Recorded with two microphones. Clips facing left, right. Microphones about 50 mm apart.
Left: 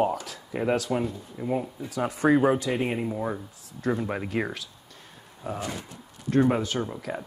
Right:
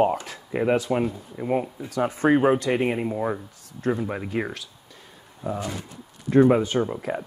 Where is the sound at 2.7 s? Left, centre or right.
Right.